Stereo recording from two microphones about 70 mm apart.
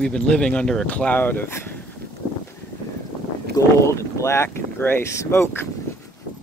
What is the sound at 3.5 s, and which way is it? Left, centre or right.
Speech, left.